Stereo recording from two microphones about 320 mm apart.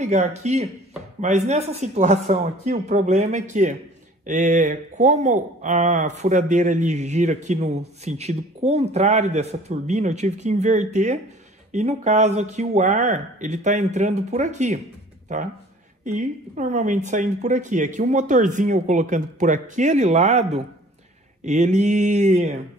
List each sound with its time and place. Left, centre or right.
0.0 s speech: right
21.5 s speech: right